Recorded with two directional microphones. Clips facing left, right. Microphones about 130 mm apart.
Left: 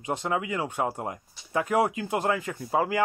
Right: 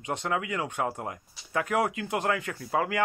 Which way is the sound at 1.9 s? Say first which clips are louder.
Left 2 dB; 25° left (ahead or behind).